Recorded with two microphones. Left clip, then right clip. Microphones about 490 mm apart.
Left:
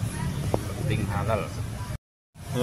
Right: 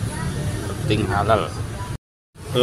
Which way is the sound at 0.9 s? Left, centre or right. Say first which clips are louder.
Right 10 dB; left.